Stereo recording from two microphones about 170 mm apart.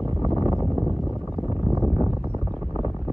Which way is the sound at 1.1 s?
25° left (ahead or behind).